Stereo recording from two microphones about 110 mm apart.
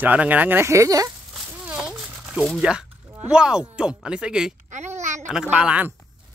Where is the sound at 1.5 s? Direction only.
10° right (ahead or behind).